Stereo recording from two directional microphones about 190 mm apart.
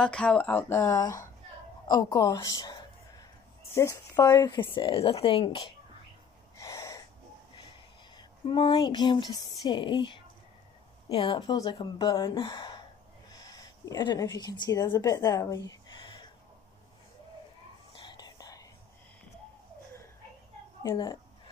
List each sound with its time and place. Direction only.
0.0 s a woman's voice: 5° left (ahead or behind); by 5.7 s 25° left (ahead or behind)
6.5 s a sound: 15° left (ahead or behind)
8.2 s speech: 25° left (ahead or behind)
17.9 s whispering: 25° left (ahead or behind)
20.9 s speech: 25° left (ahead or behind)